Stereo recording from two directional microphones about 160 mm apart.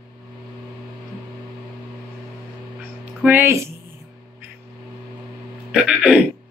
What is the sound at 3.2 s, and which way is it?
Speech, 15° right (ahead or behind).